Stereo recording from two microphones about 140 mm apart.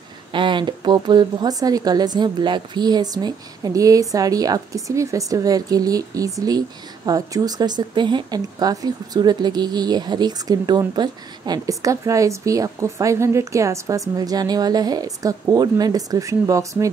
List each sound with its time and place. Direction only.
0.3 s speech: 35° right (ahead or behind)